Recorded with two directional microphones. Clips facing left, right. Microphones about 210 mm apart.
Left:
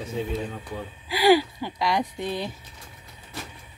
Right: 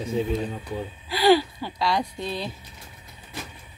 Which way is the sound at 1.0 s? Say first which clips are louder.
Even; 10° left (ahead or behind).